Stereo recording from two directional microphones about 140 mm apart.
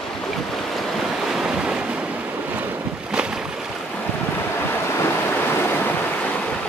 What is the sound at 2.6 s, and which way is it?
Boat, 10° right (ahead or behind).